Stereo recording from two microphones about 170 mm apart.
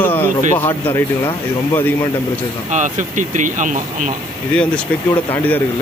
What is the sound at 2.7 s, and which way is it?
Speech, 45° right (ahead or behind).